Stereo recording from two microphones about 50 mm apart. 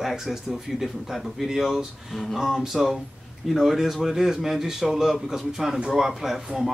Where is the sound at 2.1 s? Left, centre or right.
Centre.